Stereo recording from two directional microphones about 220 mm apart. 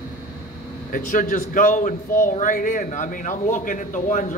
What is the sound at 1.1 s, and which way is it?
Speech, 35° left (ahead or behind).